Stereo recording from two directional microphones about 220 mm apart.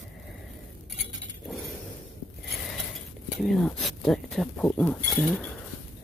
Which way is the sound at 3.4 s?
Centre (ahead or behind).